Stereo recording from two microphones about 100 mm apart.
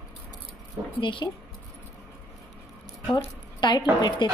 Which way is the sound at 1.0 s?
55° left (ahead or behind).